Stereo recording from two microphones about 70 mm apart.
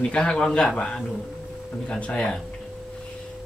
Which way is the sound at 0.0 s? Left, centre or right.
Centre.